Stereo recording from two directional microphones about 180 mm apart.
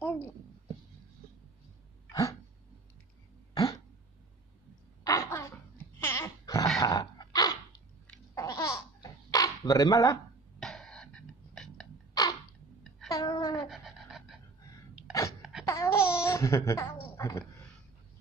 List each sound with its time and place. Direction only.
3.5 s a sound: 20° left (ahead or behind)
5.0 s throat clearing: 15° left (ahead or behind)
5.9 s dog: 15° left (ahead or behind)
8.4 s baby laughter: 15° left (ahead or behind)
10.6 s throat clearing: centre (ahead or behind)
12.1 s a sound: 20° left (ahead or behind)
13.7 s a sound: centre (ahead or behind)
15.6 s laughter: 15° left (ahead or behind)
17.2 s speech: 15° left (ahead or behind)